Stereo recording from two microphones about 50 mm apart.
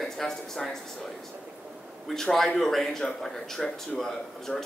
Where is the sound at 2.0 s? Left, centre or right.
Centre.